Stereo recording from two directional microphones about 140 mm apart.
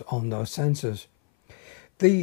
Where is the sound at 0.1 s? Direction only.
20° left (ahead or behind).